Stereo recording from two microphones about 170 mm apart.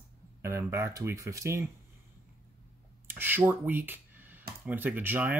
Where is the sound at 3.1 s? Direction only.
10° right (ahead or behind).